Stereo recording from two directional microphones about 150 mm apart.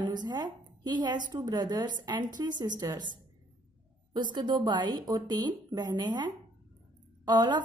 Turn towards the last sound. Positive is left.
turn(degrees=-25)  # may be behind; listen again after turning